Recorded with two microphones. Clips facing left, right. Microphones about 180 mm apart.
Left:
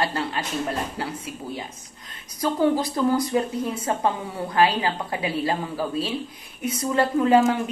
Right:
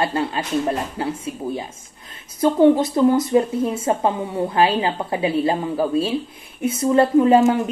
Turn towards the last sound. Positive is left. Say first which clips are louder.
# right 4 dB
turn(degrees=-25)  # may be behind; listen again after turning